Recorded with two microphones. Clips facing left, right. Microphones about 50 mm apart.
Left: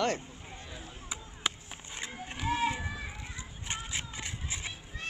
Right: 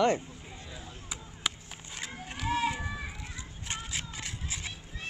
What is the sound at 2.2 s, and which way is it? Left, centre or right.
Run, left.